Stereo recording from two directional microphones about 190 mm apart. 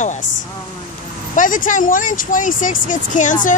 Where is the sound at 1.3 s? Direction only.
45° left (ahead or behind).